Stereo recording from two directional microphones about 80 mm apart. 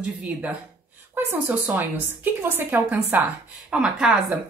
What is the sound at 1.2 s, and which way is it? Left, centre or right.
A woman's voice, right.